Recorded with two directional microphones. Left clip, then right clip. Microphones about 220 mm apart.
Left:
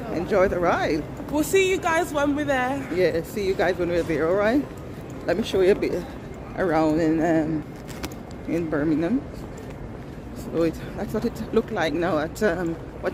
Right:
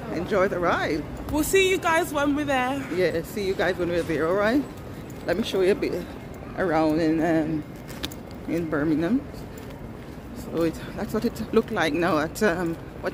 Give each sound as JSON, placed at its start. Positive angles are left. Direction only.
{"t": 0.1, "sound": "speech", "side_deg": 10}
{"t": 1.3, "sound": "speech", "side_deg": -25}
{"t": 3.0, "sound": "speech", "side_deg": 0}
{"t": 8.5, "sound": "speech", "side_deg": -5}
{"t": 10.5, "sound": "speech", "side_deg": 0}
{"t": 11.0, "sound": "speech", "side_deg": -20}
{"t": 13.0, "sound": "a sound", "side_deg": 5}